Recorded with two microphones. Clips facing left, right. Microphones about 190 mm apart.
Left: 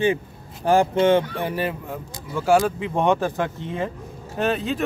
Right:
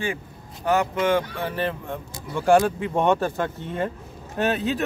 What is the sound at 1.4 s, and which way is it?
Speech, 10° left (ahead or behind).